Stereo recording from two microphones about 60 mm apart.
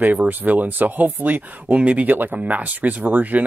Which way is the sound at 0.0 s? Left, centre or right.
Right.